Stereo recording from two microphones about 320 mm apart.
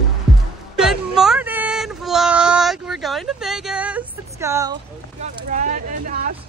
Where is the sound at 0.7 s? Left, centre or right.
Centre.